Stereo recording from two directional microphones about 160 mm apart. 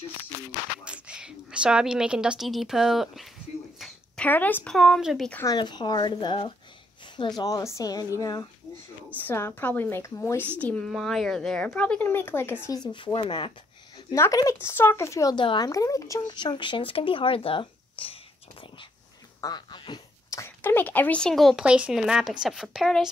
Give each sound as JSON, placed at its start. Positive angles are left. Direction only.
{"t": 0.5, "sound": "speech", "side_deg": -5}
{"t": 3.8, "sound": "a sound", "side_deg": 10}
{"t": 4.7, "sound": "speech", "side_deg": 0}
{"t": 5.3, "sound": "a woman's voice", "side_deg": 20}
{"t": 12.9, "sound": "speech", "side_deg": 30}
{"t": 14.1, "sound": "a woman's voice", "side_deg": 20}
{"t": 15.3, "sound": "speech", "side_deg": 30}